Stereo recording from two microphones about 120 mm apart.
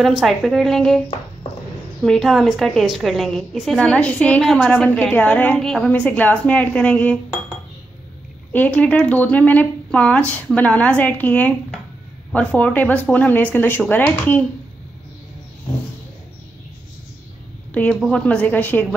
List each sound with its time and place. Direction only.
0.0 s a woman's voice: centre (ahead or behind)
2.0 s a woman's voice: centre (ahead or behind)
8.5 s speech: 10° left (ahead or behind)
17.7 s speech: 10° left (ahead or behind)